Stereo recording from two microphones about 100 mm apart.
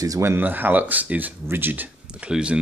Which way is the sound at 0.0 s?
30° right (ahead or behind).